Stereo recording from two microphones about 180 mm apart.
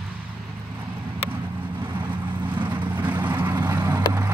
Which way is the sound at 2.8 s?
10° right (ahead or behind).